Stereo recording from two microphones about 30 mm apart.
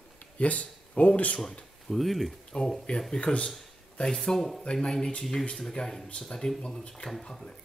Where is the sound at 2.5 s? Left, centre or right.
Left.